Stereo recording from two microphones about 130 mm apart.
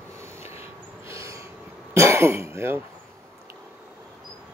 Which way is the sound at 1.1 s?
25° right (ahead or behind).